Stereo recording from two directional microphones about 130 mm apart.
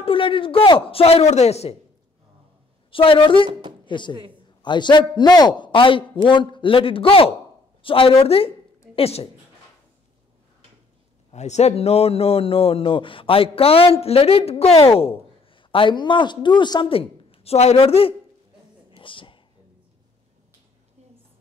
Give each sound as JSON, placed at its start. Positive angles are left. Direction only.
{"t": 0.0, "sound": "speech", "side_deg": 40}
{"t": 2.9, "sound": "a man's voice", "side_deg": 45}
{"t": 11.3, "sound": "speech", "side_deg": 60}
{"t": 18.9, "sound": "a sound", "side_deg": 40}